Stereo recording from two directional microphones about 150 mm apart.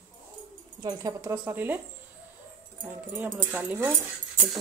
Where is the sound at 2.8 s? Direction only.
10° right (ahead or behind).